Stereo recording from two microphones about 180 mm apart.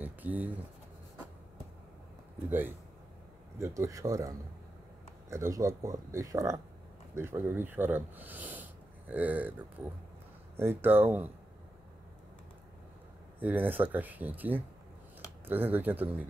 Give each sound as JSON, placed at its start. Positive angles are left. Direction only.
{"t": 0.0, "sound": "pigeon", "side_deg": -10}
{"t": 3.5, "sound": "speech", "side_deg": -15}
{"t": 13.4, "sound": "speech", "side_deg": -10}